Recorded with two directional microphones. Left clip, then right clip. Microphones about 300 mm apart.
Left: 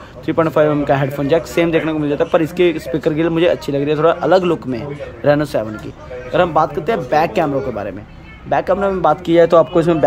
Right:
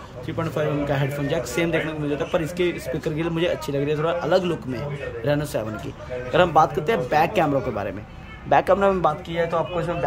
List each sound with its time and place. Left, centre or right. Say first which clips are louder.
0.3 s speech: left 12 dB; centre
9.2 s speech: left 13 dB; left